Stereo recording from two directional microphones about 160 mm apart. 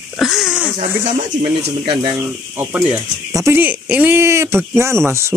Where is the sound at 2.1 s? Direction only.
15° right (ahead or behind).